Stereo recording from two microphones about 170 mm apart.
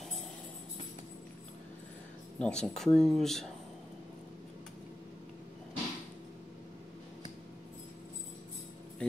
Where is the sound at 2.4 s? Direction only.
5° left (ahead or behind).